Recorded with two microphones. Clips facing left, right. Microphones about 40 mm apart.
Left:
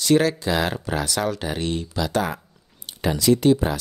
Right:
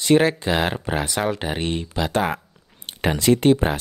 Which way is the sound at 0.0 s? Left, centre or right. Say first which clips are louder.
Right 2 dB; right.